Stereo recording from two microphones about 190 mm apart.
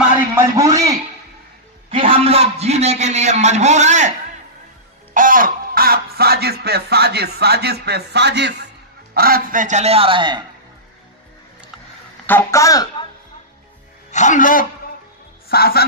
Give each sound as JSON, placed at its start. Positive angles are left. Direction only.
{"t": 0.6, "sound": "a sound", "side_deg": -15}
{"t": 1.9, "sound": "a sound", "side_deg": -30}
{"t": 5.1, "sound": "speech", "side_deg": -45}
{"t": 9.1, "sound": "a man's voice", "side_deg": -50}
{"t": 12.3, "sound": "speech", "side_deg": 10}
{"t": 14.1, "sound": "a man's voice", "side_deg": 40}